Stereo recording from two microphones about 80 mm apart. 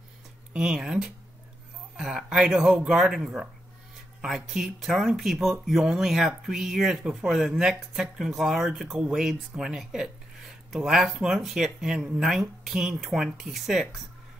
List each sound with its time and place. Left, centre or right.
0.5 s speech: centre